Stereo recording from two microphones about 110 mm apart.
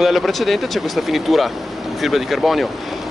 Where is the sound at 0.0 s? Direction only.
Centre (ahead or behind).